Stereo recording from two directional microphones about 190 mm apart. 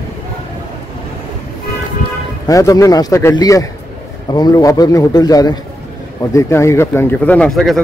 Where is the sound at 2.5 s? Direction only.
15° left (ahead or behind).